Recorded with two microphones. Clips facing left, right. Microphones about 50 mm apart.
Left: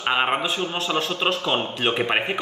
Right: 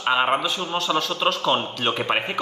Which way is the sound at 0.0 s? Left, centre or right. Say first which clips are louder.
Right 1 dB; centre.